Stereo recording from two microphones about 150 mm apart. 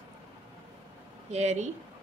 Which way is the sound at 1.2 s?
50° right (ahead or behind).